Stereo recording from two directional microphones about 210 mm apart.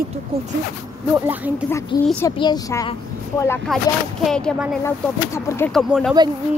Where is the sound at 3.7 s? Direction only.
Centre (ahead or behind).